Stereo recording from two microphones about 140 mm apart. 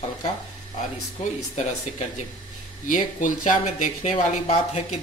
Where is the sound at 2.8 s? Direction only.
70° left (ahead or behind).